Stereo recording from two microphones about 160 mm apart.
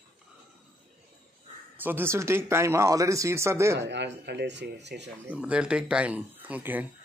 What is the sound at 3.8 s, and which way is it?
Speech, 90° right.